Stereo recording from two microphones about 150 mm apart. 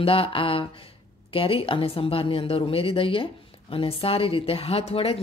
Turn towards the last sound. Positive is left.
turn(degrees=40)  # may be behind; listen again after turning